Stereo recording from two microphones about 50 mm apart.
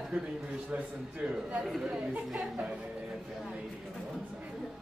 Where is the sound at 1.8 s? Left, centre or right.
Right.